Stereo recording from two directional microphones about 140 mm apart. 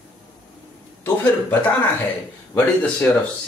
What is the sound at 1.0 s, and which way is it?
Speech, 15° left (ahead or behind).